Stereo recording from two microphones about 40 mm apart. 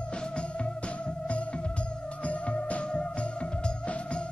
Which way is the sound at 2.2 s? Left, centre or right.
Left.